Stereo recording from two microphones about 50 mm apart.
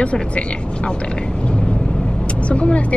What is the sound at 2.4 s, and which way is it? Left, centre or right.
Speech, left.